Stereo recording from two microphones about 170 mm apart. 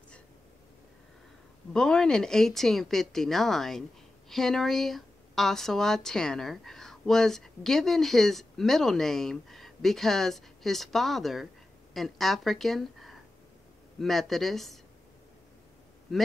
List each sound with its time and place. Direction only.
1.7 s speech: 5° left (ahead or behind)